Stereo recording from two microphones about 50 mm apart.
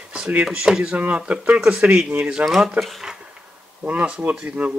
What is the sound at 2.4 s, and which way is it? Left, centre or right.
Speech, centre.